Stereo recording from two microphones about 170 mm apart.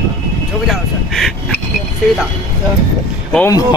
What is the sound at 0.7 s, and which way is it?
Speech, centre (ahead or behind).